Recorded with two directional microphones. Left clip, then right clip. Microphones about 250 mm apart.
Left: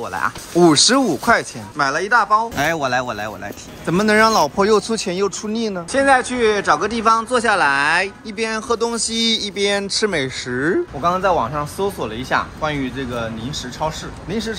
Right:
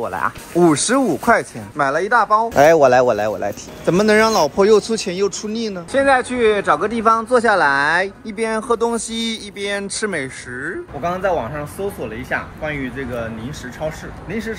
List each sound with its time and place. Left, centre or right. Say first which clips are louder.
0.0 s speech: right 1 dB; centre
2.5 s speech: right 8 dB; centre
5.4 s speech: left 1 dB; centre
5.9 s speech: even; centre